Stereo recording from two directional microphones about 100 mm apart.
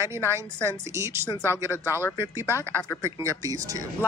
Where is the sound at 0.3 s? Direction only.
30° right (ahead or behind).